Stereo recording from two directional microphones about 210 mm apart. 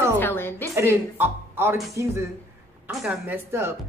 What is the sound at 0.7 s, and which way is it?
A woman's voice, 10° right (ahead or behind).